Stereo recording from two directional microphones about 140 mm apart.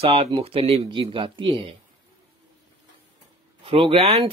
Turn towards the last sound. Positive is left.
turn(degrees=-45)  # may be behind; listen again after turning